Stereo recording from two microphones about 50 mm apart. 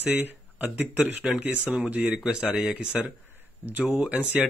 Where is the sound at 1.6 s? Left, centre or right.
Right.